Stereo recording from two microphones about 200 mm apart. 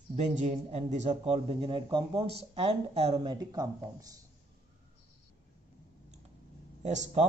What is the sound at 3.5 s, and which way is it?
Speech, 20° right (ahead or behind).